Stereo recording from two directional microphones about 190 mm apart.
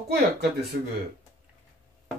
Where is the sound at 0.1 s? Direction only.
55° right (ahead or behind).